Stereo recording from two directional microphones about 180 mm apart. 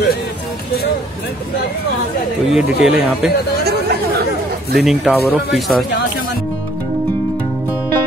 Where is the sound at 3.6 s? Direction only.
65° right (ahead or behind).